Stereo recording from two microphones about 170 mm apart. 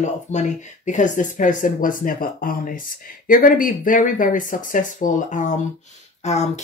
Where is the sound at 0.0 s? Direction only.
45° left (ahead or behind).